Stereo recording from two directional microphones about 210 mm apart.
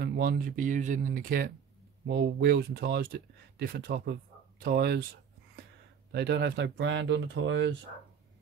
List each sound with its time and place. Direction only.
0.0 s speech: 45° right (ahead or behind)
6.1 s speech: 55° right (ahead or behind)